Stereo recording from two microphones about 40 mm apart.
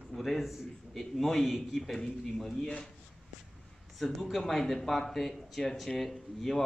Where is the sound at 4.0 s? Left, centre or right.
Centre.